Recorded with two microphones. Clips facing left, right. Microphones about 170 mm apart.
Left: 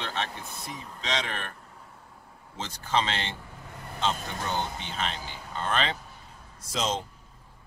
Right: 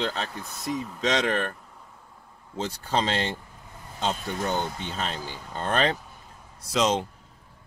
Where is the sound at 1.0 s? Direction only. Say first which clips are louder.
Right 7 dB; 45° right (ahead or behind).